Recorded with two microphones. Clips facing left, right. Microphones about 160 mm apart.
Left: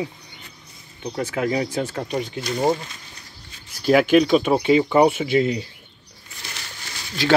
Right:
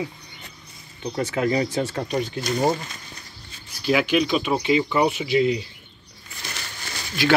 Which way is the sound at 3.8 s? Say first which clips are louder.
Left 5 dB; 45° left (ahead or behind).